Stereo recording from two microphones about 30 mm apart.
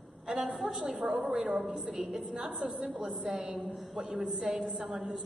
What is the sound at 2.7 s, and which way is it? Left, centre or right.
Speech, right.